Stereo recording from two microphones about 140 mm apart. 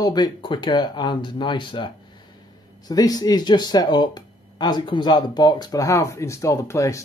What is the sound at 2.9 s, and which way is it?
Speech, 25° left (ahead or behind).